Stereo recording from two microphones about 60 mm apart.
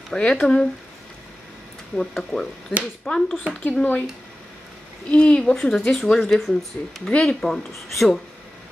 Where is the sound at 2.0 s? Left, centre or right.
Centre.